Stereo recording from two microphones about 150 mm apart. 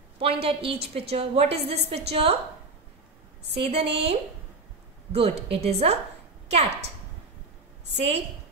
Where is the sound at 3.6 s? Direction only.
40° right (ahead or behind).